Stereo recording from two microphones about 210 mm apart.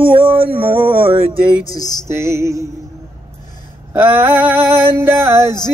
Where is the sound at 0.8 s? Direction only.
25° right (ahead or behind).